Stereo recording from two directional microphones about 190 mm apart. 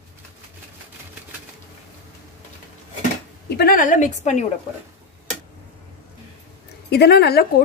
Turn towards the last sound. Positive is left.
turn(degrees=55)  # may be behind; listen again after turning